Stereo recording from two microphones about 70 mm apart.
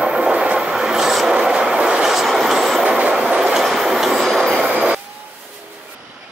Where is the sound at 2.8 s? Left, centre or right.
Centre.